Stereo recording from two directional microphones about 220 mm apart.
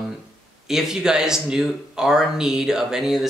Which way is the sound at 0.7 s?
Centre (ahead or behind).